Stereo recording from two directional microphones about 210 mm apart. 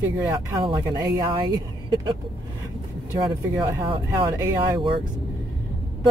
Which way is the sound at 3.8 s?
25° right (ahead or behind).